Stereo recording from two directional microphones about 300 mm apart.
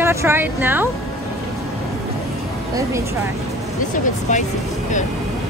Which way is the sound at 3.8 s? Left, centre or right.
Left.